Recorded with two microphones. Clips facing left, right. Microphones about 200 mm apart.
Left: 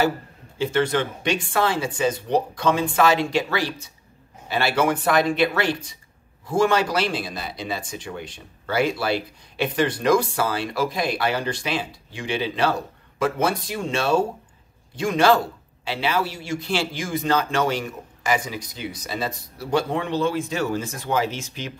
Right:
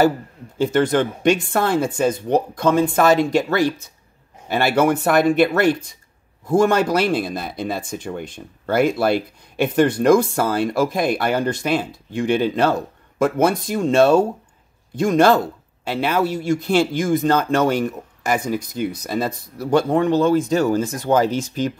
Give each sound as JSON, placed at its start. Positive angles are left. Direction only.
{"t": 0.6, "sound": "speech", "side_deg": -45}